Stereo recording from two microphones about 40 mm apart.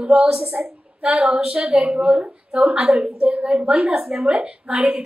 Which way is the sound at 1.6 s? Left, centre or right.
Right.